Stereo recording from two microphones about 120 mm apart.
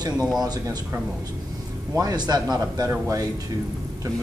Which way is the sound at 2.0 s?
35° right (ahead or behind).